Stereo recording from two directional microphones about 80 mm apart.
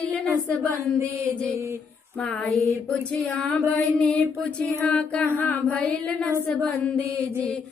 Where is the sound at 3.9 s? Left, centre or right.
Centre.